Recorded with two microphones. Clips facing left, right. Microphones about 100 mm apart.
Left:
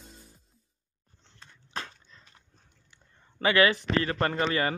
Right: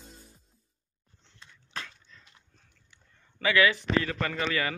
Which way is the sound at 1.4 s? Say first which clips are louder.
Left 3 dB; 35° left (ahead or behind).